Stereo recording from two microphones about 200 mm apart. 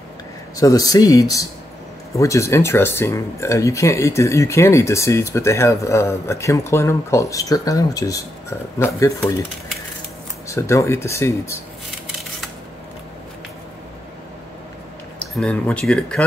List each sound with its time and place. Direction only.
0.6 s speech: 15° left (ahead or behind)
10.5 s speech: 15° left (ahead or behind)
15.1 s speech: 5° left (ahead or behind)